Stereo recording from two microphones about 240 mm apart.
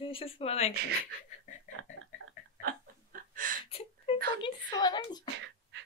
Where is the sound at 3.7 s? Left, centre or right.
Left.